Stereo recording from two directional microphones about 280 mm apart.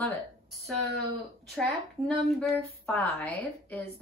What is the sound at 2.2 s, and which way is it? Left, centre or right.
A woman's voice, centre.